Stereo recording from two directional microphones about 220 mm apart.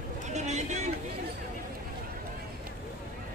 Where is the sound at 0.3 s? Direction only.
30° right (ahead or behind).